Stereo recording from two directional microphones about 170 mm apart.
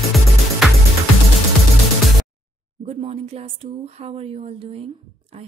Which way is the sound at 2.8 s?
35° right (ahead or behind).